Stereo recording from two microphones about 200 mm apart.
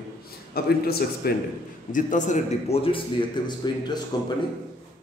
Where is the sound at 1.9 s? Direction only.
40° left (ahead or behind); by 4.3 s 20° left (ahead or behind).